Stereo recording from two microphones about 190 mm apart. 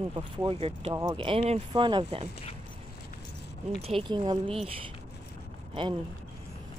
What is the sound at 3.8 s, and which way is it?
Speech, 30° right (ahead or behind).